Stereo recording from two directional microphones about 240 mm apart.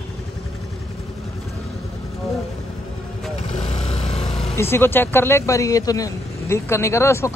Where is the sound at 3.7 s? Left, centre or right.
Left.